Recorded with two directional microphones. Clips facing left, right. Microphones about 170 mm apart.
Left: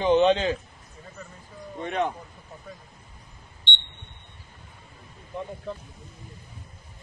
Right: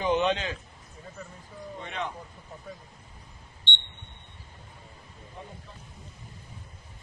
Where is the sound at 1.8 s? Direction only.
50° left (ahead or behind).